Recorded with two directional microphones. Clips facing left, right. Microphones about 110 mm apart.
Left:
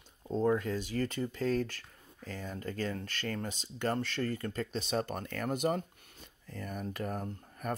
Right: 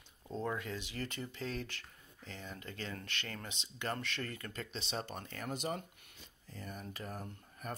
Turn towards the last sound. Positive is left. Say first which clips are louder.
# left 7 dB
turn(degrees=50)  # may be behind; listen again after turning